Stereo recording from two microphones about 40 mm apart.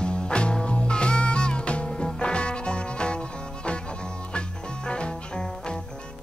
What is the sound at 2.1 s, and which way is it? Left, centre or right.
Music, left.